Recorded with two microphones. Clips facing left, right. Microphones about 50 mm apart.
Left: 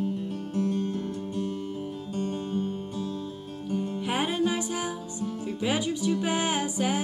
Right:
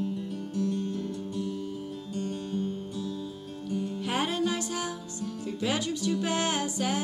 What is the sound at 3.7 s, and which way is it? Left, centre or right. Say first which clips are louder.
Music: left 2 dB; left.